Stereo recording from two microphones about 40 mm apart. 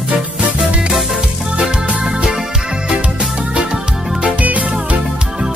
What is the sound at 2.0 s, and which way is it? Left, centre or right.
Music, centre.